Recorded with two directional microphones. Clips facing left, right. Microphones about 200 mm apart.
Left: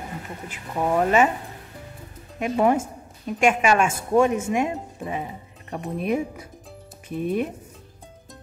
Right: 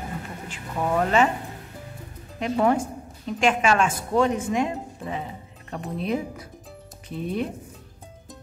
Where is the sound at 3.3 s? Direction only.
10° left (ahead or behind).